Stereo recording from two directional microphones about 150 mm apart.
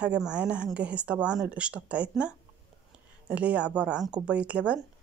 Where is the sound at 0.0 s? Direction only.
5° right (ahead or behind).